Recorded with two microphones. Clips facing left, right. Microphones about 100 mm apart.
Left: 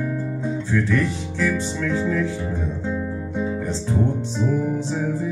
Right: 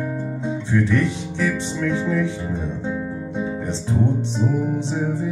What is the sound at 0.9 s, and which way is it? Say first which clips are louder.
Music: right 1 dB; 20° right (ahead or behind).